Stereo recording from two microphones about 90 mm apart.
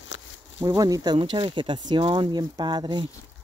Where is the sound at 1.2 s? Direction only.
65° right (ahead or behind).